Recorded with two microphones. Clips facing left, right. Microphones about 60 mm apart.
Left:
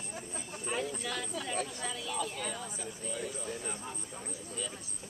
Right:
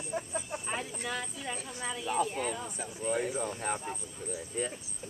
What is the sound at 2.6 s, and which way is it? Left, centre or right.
Speech, right.